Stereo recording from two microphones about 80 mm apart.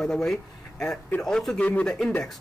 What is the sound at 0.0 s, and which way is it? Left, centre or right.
Speech, centre.